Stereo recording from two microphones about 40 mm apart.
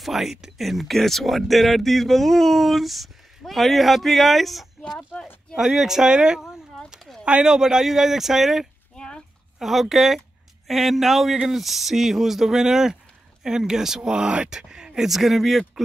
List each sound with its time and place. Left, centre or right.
0.0 s speech: centre
5.6 s speech: centre
7.1 s a sound: centre
7.4 s speech: centre
8.9 s a sound: left
9.6 s speech: centre